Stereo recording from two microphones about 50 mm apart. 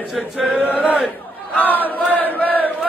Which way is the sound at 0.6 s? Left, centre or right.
Left.